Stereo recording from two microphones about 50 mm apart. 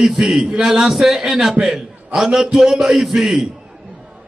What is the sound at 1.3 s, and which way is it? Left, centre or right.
A man's voice, centre.